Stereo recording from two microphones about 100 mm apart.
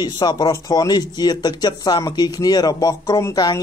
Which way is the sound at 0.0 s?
45° left (ahead or behind).